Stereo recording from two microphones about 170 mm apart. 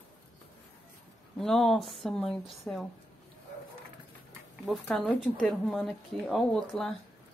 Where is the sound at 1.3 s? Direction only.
Centre (ahead or behind).